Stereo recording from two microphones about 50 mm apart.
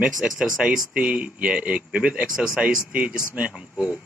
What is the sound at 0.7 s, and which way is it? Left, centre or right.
Speech, centre.